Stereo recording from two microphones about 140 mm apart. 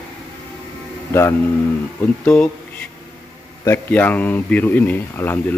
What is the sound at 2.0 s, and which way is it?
Speech, 10° left (ahead or behind).